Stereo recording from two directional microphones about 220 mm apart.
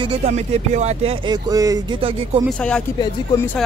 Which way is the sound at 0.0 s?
25° right (ahead or behind).